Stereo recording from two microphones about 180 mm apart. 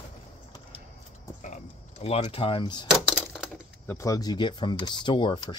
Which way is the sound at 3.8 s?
15° left (ahead or behind).